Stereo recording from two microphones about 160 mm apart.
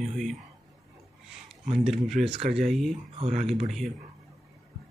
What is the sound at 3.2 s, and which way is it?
Speech, 45° right (ahead or behind).